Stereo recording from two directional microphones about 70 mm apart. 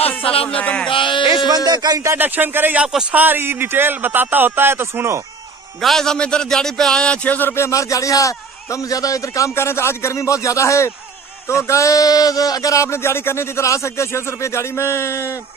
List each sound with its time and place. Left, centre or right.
0.1 s speech: left
1.5 s speech: right
2.1 s a man's voice: right
5.8 s speech: centre
7.2 s speech: left
7.5 s a man's voice: left
9.7 s a man's voice: left